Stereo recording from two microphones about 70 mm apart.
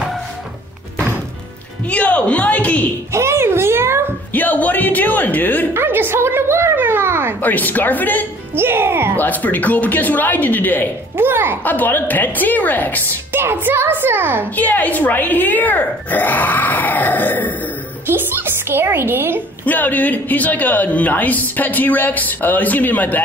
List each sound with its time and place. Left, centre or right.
1.9 s a man's voice: centre
3.1 s a sound: right
4.3 s a sound: left
5.7 s a sound: right
7.4 s a man's voice: left
8.5 s a child's voice: right
9.2 s a man's voice: left
11.1 s a child's voice: right
11.6 s a man's voice: left
13.3 s a child's voice: right
14.5 s a man's voice: left
18.0 s a woman's voice: right
19.6 s a man's voice: left